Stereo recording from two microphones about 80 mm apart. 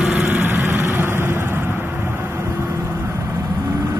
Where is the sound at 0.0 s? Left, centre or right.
Right.